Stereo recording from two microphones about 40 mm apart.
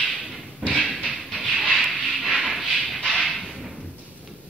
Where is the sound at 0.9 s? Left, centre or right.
Centre.